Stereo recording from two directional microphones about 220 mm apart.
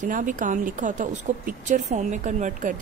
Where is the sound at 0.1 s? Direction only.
35° right (ahead or behind).